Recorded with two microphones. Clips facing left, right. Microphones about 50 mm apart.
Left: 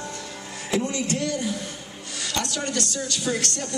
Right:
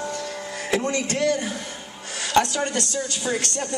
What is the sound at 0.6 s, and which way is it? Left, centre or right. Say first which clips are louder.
A man's voice: right 1 dB; right.